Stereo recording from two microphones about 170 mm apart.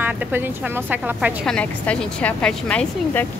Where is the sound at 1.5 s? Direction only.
5° left (ahead or behind).